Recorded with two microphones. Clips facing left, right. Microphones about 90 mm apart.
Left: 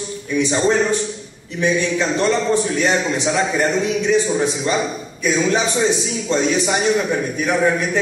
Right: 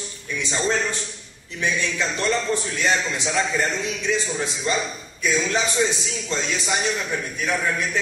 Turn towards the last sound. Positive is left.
turn(degrees=15)  # may be behind; listen again after turning